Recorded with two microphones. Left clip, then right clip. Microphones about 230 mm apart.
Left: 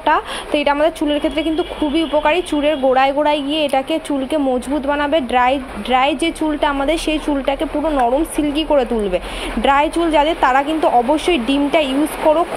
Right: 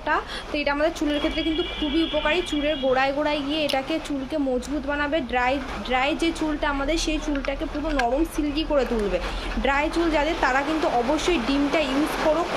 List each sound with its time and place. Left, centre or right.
0.0 s a woman's voice: left